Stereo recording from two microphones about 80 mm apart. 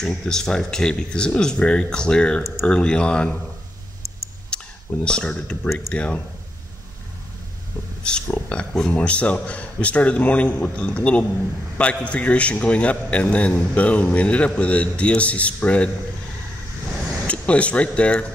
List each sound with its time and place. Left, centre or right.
0.0 s a man's voice: centre
4.5 s a sound: centre
5.0 s a man's voice: centre
8.0 s a man's voice: centre
17.3 s a man's voice: centre